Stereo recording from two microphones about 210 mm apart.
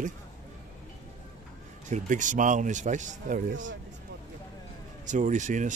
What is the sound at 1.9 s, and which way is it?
Speech, 35° right (ahead or behind).